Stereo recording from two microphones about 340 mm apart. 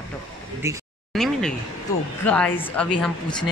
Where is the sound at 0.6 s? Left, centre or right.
Centre.